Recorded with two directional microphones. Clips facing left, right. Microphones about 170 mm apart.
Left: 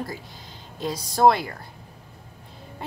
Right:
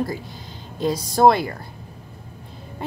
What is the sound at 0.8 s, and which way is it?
Speech, 50° right (ahead or behind).